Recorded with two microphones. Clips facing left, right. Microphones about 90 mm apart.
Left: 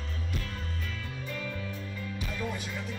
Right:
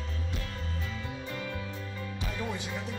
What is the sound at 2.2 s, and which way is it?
Music, 30° right (ahead or behind).